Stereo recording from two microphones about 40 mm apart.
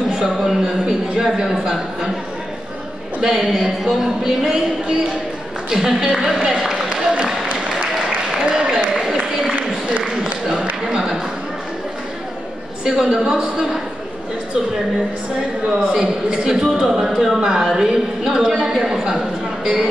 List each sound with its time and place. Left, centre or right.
0.1 s speech: right
0.5 s a man's voice: centre
1.1 s a man's voice: centre
3.2 s a man's voice: centre
5.7 s a man's voice: centre
6.2 s a sound: centre
8.4 s applause: centre
8.9 s a sound: centre
12.8 s a man's voice: centre
15.9 s a man's voice: right